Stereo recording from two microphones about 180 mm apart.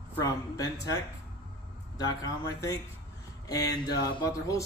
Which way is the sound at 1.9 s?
20° left (ahead or behind).